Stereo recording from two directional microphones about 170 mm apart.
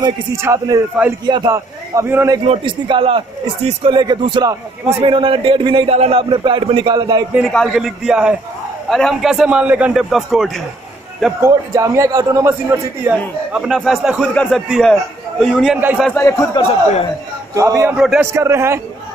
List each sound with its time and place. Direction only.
0.4 s a man's voice: 20° right (ahead or behind)
2.4 s a man's voice: 30° right (ahead or behind)
7.3 s a man's voice: centre (ahead or behind)
11.4 s a man's voice: 15° right (ahead or behind); by 15.8 s centre (ahead or behind)
15.8 s a man's voice: 10° right (ahead or behind)
16.1 s a man's voice: 15° left (ahead or behind)
17.6 s a man's voice: 20° right (ahead or behind)
17.9 s a man's voice: 5° right (ahead or behind)
18.2 s a man's voice: 15° right (ahead or behind)